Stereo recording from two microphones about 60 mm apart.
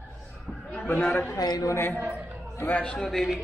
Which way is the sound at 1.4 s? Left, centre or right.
Left.